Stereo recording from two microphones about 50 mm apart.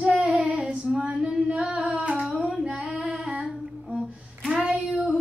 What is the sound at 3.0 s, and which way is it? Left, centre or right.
Humming, centre.